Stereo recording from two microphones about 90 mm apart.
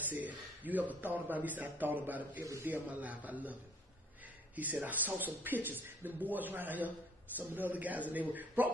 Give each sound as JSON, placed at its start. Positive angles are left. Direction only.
{"t": 0.1, "sound": "a man's voice", "side_deg": -20}
{"t": 4.8, "sound": "speech", "side_deg": -20}